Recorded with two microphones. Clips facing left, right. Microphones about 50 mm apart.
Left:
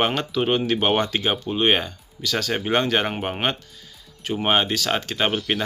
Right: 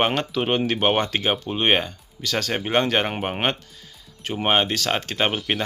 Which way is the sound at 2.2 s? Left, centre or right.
Right.